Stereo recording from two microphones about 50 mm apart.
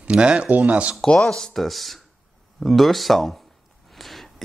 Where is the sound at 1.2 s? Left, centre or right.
Centre.